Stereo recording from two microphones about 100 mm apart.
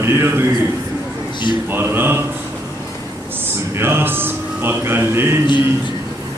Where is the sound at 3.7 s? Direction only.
25° right (ahead or behind).